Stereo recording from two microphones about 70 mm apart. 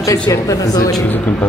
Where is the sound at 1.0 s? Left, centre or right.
Left.